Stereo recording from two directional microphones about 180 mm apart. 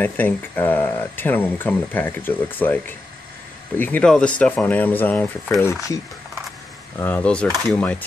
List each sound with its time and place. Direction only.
0.0 s speech: 10° left (ahead or behind)
7.0 s speech: 10° left (ahead or behind)